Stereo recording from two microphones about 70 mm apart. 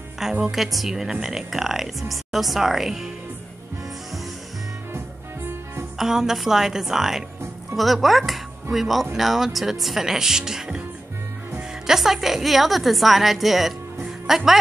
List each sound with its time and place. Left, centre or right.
0.2 s a woman's voice: centre
4.9 s music: right
5.9 s a woman's voice: centre
11.8 s a woman's voice: centre
14.0 s music: centre